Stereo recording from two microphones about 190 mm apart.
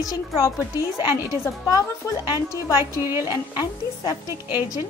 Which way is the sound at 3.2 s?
20° left (ahead or behind).